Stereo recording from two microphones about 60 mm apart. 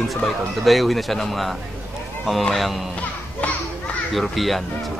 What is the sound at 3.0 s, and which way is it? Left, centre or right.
Children playing, left.